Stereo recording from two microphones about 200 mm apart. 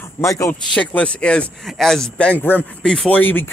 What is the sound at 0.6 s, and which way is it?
Speech, 5° left (ahead or behind).